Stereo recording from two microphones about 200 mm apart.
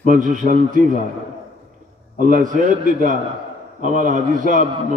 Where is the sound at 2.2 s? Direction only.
40° right (ahead or behind).